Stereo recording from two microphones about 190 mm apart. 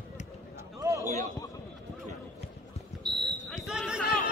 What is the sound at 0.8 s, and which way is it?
Basketball bounce, 15° right (ahead or behind).